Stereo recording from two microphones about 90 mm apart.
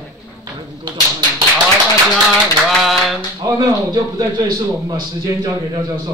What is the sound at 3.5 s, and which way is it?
A man's voice, 45° right (ahead or behind).